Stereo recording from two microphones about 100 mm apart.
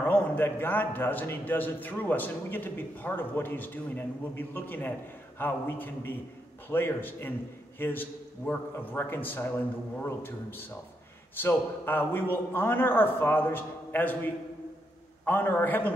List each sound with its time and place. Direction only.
0.0 s a man's voice: 20° left (ahead or behind)